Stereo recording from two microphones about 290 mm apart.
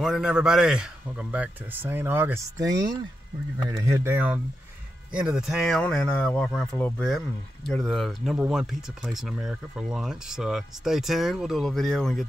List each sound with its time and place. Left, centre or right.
0.0 s speech: centre